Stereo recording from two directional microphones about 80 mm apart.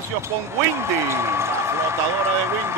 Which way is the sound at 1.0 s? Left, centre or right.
Right.